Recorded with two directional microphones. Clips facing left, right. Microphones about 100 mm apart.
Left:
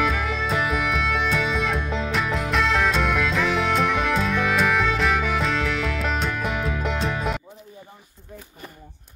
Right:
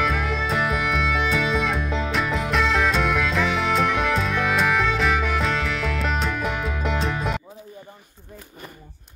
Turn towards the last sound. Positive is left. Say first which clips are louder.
# even
turn(degrees=0)  # may be behind; listen again after turning